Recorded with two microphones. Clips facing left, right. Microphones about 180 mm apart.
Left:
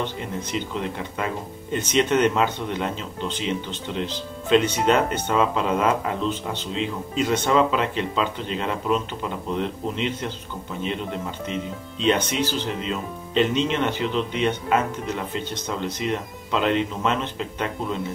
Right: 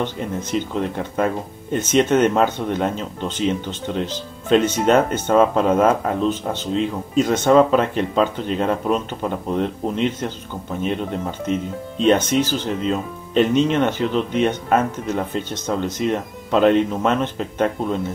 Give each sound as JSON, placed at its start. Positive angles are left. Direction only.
{"t": 0.4, "sound": "speech", "side_deg": -45}